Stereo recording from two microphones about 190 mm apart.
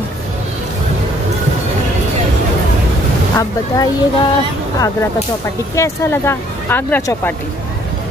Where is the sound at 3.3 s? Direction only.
20° left (ahead or behind).